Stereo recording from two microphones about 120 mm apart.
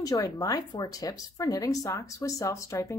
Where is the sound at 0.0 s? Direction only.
30° left (ahead or behind).